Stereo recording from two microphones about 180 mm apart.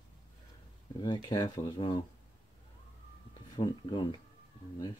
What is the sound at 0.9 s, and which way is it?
Speech, 25° left (ahead or behind).